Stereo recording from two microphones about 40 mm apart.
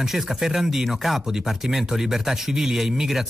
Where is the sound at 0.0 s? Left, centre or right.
Centre.